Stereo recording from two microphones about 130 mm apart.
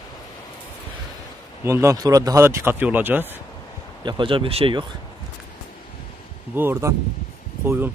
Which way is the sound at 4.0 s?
35° right (ahead or behind).